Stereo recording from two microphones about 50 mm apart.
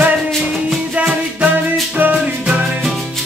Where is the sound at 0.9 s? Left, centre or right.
Right.